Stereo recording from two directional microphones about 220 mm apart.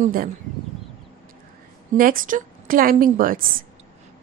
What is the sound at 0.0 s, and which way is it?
Speech, 40° right (ahead or behind).